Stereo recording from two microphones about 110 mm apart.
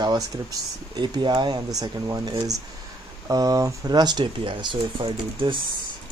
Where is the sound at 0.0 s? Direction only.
40° right (ahead or behind).